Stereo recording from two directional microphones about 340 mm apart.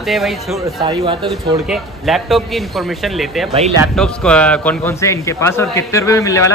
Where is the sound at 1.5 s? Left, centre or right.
Centre.